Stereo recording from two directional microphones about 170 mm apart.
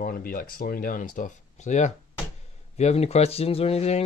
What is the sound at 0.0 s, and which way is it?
Speech, 55° left (ahead or behind).